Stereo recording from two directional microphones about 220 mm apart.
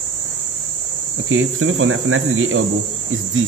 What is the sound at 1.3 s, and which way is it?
Cricket, 65° right (ahead or behind).